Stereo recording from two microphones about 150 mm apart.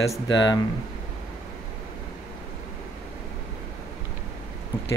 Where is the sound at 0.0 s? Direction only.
25° left (ahead or behind).